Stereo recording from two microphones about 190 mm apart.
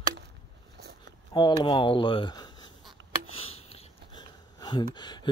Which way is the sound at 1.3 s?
25° left (ahead or behind).